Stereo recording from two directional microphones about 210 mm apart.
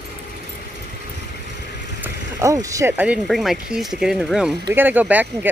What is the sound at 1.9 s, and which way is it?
Speech, 10° right (ahead or behind).